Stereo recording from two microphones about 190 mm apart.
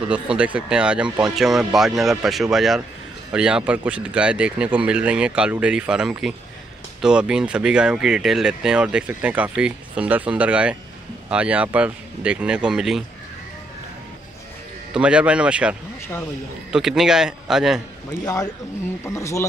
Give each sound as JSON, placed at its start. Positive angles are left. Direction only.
{"t": 0.1, "sound": "speech", "side_deg": -5}
{"t": 15.0, "sound": "speech", "side_deg": -5}
{"t": 16.7, "sound": "speech", "side_deg": 0}
{"t": 18.2, "sound": "speech", "side_deg": 20}